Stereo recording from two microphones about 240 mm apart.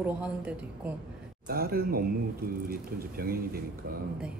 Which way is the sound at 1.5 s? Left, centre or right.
Right.